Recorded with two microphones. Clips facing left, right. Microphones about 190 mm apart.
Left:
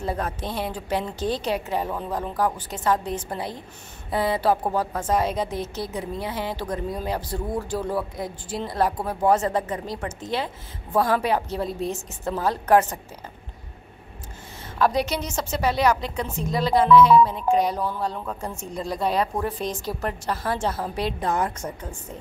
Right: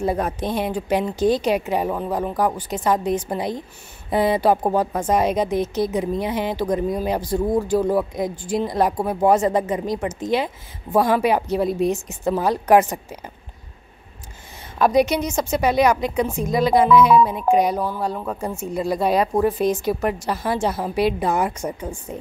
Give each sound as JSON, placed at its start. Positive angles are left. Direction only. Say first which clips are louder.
{"t": 0.0, "sound": "speech", "louder": "right 6 dB", "side_deg": -15}
{"t": 14.8, "sound": "speech", "louder": "right 6 dB", "side_deg": -15}